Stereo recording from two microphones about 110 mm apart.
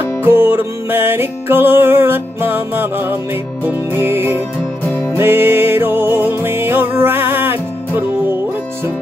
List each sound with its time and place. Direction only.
0.0 s music: 20° right (ahead or behind)